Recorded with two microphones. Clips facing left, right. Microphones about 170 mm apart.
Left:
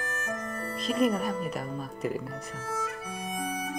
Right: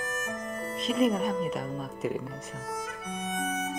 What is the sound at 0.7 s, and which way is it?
Speech, centre (ahead or behind).